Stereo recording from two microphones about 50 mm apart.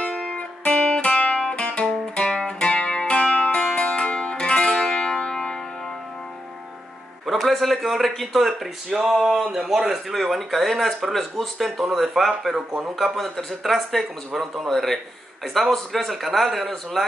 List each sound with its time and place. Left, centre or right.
0.1 s music: centre
0.4 s music: centre
7.2 s speech: centre